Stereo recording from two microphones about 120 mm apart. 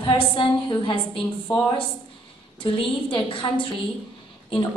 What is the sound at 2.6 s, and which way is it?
A woman's voice, 45° left (ahead or behind).